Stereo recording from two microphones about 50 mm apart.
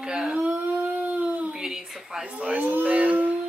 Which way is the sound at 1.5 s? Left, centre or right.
Centre.